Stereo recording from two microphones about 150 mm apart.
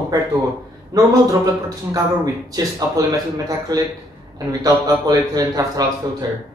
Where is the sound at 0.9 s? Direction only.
25° right (ahead or behind).